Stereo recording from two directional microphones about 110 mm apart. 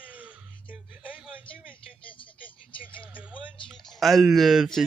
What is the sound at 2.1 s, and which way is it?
Vehicle, 50° left (ahead or behind).